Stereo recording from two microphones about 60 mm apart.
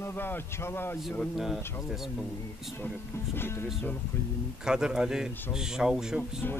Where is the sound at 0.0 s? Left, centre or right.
Left.